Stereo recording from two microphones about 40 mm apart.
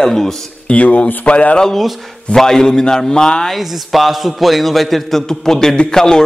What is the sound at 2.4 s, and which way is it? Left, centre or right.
A man's voice, centre.